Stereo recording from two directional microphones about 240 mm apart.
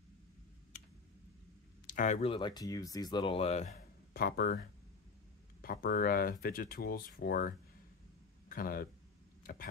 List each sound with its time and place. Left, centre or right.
1.9 s speech: left
4.1 s speech: left
5.6 s speech: left
9.4 s a sound: left